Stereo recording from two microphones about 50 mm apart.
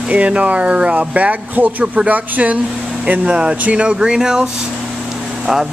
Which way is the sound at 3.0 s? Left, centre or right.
Centre.